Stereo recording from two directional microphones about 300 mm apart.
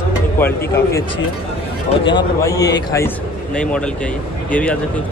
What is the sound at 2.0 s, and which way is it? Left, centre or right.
A man's voice, centre.